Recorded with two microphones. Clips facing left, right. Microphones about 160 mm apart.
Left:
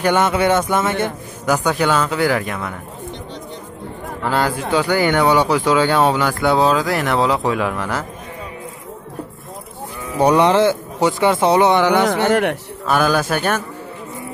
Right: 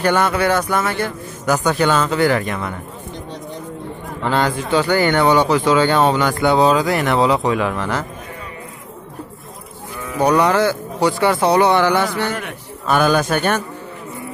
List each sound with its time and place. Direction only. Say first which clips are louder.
0.0 s speech: left 1 dB; 20° left (ahead or behind)
1.5 s speech: right 1 dB; 10° left (ahead or behind)
4.2 s speech: right 1 dB; 5° left (ahead or behind)
10.1 s speech: left 2 dB; 25° left (ahead or behind)
12.1 s a man's voice: left 7 dB; 75° left (ahead or behind)
12.8 s speech: right 1 dB; 5° left (ahead or behind)